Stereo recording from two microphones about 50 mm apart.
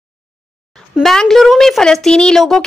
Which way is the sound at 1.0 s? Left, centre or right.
Centre.